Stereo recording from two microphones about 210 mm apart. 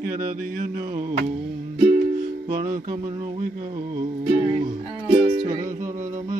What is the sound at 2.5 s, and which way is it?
Music, 40° right (ahead or behind).